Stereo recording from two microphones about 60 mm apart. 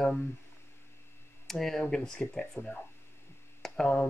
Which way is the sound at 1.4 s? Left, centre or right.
Centre.